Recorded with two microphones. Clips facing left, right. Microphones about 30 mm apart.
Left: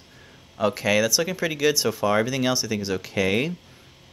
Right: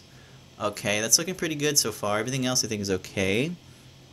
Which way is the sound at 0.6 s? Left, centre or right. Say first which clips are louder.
Left 6 dB; centre.